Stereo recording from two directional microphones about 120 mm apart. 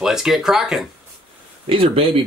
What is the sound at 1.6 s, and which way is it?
Speech, 50° right (ahead or behind).